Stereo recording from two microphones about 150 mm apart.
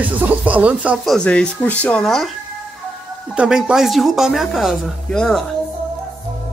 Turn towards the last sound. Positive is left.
turn(degrees=5)  # may be behind; listen again after turning